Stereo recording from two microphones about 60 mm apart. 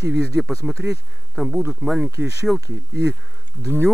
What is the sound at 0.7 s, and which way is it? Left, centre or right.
A man's voice, centre.